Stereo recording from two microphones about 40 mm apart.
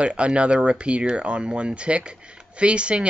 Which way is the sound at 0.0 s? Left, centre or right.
Right.